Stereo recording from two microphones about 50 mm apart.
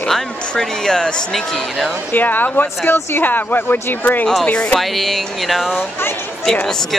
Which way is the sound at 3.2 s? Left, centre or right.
Left.